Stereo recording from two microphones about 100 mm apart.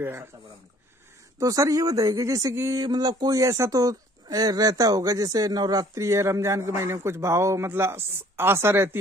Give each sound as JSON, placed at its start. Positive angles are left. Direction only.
{"t": 0.0, "sound": "speech", "side_deg": -20}
{"t": 1.4, "sound": "speech", "side_deg": -35}
{"t": 2.8, "sound": "speech", "side_deg": -40}